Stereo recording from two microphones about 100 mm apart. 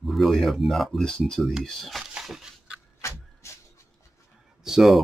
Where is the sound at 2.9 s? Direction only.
30° left (ahead or behind).